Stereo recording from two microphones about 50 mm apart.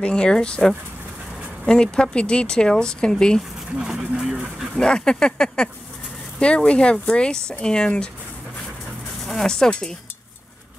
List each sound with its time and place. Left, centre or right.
0.0 s speech: centre
1.7 s speech: centre
3.7 s speech: centre
4.7 s speech: centre
9.2 s speech: centre